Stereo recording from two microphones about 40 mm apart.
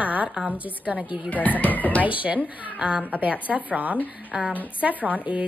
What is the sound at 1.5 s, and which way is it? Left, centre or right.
Speech, left.